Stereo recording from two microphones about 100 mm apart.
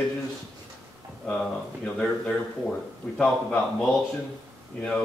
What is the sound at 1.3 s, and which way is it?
Speech, 10° left (ahead or behind).